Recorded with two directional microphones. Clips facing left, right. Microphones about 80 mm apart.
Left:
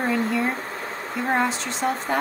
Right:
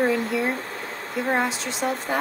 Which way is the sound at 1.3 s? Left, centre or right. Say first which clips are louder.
Left 1 dB; centre.